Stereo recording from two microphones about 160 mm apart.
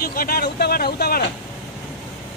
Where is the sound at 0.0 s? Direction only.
65° left (ahead or behind).